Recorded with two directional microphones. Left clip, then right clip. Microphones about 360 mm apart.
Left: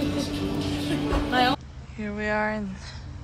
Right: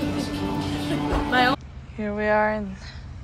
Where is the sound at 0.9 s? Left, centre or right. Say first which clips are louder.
Right 3 dB; centre.